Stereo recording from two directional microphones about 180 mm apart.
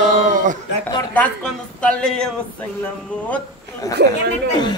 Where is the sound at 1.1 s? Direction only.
5° left (ahead or behind).